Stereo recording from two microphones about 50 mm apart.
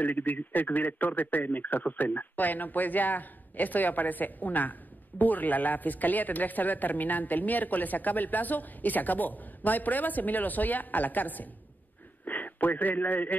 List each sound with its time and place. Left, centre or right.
0.0 s a man's voice: left